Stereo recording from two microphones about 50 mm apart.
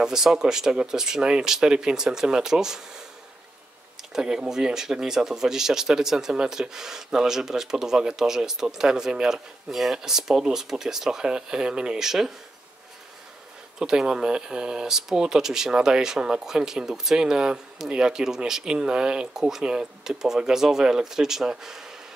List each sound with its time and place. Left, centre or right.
0.0 s speech: centre
4.1 s speech: centre
13.7 s speech: centre